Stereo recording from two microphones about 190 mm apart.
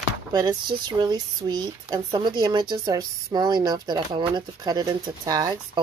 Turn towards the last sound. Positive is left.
turn(degrees=-20)  # may be behind; listen again after turning